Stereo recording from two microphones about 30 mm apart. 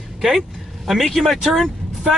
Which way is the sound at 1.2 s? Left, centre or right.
Centre.